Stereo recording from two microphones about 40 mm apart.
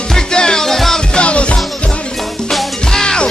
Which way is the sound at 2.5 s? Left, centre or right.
Centre.